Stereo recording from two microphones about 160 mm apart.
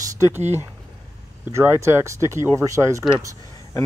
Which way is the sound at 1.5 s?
15° right (ahead or behind).